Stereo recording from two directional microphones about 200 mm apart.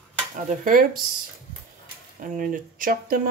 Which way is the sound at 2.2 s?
40° right (ahead or behind).